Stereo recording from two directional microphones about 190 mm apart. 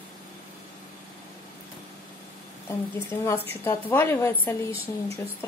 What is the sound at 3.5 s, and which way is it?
A woman's voice, 10° left (ahead or behind).